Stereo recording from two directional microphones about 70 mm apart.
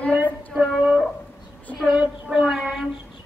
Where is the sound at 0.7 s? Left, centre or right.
Centre.